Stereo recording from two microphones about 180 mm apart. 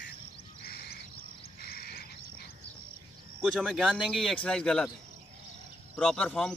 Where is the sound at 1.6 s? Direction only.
60° left (ahead or behind).